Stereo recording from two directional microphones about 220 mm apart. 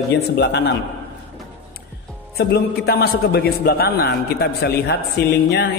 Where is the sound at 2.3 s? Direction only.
45° left (ahead or behind).